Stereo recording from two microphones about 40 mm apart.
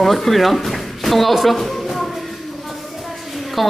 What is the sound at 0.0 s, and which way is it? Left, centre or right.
Speech, centre.